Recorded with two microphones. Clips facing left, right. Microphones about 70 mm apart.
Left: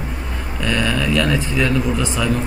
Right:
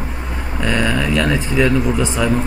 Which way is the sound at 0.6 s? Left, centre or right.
Centre.